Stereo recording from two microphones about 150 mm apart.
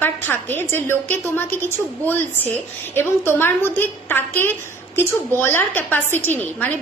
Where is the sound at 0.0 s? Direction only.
15° left (ahead or behind).